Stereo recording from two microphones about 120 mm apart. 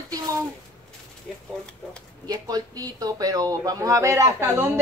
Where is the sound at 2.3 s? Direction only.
35° right (ahead or behind).